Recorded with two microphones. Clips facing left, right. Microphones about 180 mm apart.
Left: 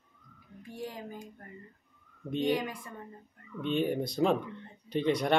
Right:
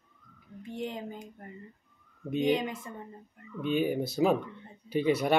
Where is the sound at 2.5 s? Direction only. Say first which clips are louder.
Right 2 dB; 25° right (ahead or behind).